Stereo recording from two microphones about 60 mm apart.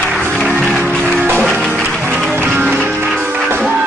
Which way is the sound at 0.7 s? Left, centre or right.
Centre.